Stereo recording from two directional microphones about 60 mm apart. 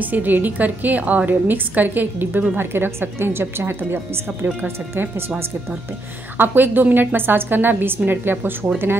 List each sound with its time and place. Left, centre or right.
0.0 s a woman's voice: right
6.3 s a woman's voice: right